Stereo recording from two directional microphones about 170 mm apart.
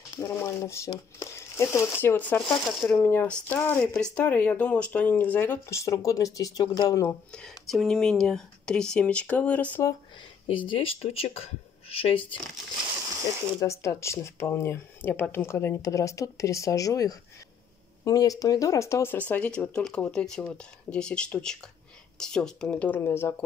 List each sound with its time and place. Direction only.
0.2 s speech: 15° left (ahead or behind)
7.3 s speech: centre (ahead or behind)
10.5 s speech: 30° left (ahead or behind)
13.6 s speech: 15° left (ahead or behind)